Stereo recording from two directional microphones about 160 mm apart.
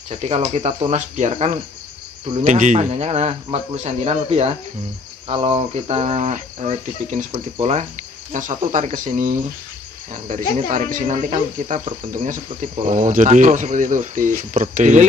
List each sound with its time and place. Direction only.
0.1 s speech: 40° right (ahead or behind)
0.9 s speech: 45° right (ahead or behind)